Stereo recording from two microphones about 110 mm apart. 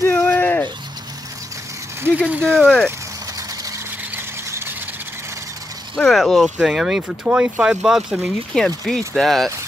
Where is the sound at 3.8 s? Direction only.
15° right (ahead or behind).